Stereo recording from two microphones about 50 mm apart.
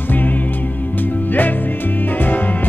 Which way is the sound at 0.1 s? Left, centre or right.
Left.